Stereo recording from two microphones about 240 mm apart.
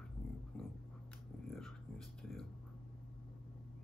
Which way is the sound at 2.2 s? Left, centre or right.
Centre.